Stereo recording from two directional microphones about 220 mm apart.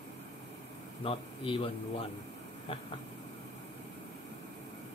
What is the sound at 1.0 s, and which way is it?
A man's voice, 25° left (ahead or behind).